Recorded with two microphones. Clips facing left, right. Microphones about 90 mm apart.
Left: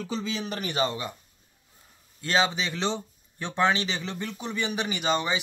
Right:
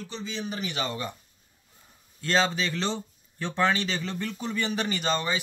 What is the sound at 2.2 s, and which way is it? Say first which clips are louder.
Speech: even; 15° left (ahead or behind).